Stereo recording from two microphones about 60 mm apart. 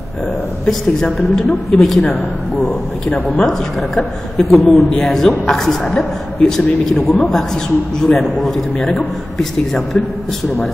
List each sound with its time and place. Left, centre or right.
0.7 s a man's voice: centre
3.1 s speech: left
3.4 s a man's voice: centre
7.1 s speech: left
8.0 s a man's voice: centre